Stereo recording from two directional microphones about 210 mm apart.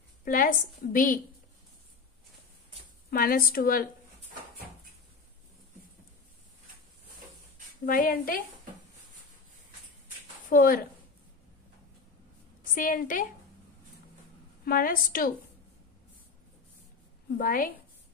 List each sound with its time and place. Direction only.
0.2 s a woman's voice: 40° left (ahead or behind)
3.1 s a woman's voice: 45° left (ahead or behind)
7.8 s a woman's voice: 45° left (ahead or behind)
10.5 s a woman's voice: 45° left (ahead or behind)
12.7 s a woman's voice: 40° left (ahead or behind)
14.6 s a woman's voice: 45° left (ahead or behind)
17.4 s a woman's voice: 40° left (ahead or behind)